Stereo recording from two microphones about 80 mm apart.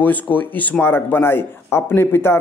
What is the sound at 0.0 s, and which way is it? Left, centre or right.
Speech, left.